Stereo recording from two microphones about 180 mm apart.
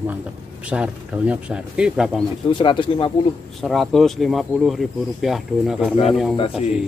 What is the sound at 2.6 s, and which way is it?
Speech, 25° left (ahead or behind).